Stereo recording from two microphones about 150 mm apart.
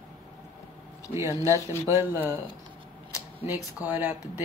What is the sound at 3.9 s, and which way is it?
Speech, 15° right (ahead or behind).